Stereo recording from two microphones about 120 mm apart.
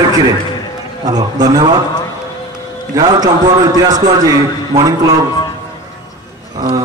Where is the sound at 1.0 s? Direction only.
35° right (ahead or behind).